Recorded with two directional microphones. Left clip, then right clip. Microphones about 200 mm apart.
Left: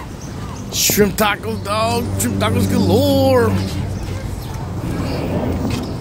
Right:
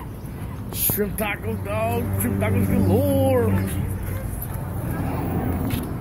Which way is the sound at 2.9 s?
25° left (ahead or behind).